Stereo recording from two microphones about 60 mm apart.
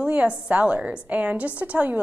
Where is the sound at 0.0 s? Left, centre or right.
Centre.